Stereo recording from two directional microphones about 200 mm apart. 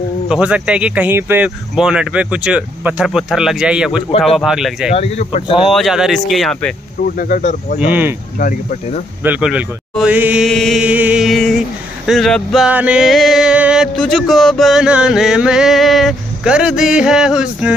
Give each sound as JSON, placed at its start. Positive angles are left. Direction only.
{"t": 0.3, "sound": "male singing", "side_deg": -5}
{"t": 4.9, "sound": "speech", "side_deg": 30}
{"t": 5.7, "sound": "male singing", "side_deg": 0}
{"t": 7.2, "sound": "speech", "side_deg": 45}
{"t": 7.8, "sound": "speech", "side_deg": -10}
{"t": 8.4, "sound": "speech", "side_deg": 40}
{"t": 9.2, "sound": "male singing", "side_deg": -5}